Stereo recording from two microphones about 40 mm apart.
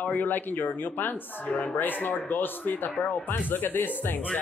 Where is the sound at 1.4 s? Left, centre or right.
Left.